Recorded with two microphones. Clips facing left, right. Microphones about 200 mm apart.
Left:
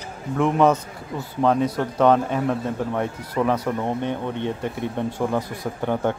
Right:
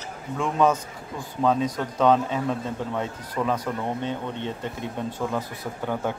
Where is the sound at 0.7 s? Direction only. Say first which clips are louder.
Left 4 dB; 10° left (ahead or behind).